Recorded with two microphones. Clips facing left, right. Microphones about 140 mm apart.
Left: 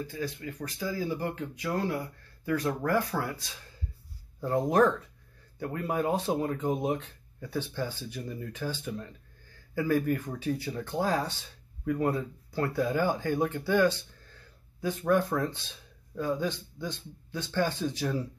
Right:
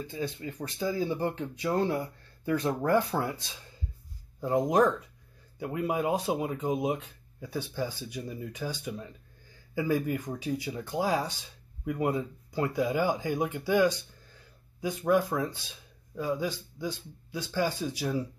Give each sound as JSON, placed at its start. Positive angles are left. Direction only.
{"t": 0.0, "sound": "speech", "side_deg": -25}